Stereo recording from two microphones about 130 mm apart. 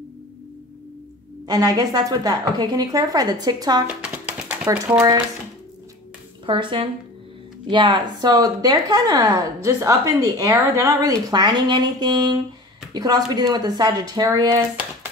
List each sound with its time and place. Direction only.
1.4 s a woman's voice: 30° right (ahead or behind)
3.8 s a sound: 10° right (ahead or behind)
4.9 s speech: 10° right (ahead or behind)
6.4 s a woman's voice: 40° right (ahead or behind)